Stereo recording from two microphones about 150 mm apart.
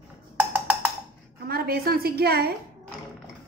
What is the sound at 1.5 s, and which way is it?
A woman's voice, 90° right.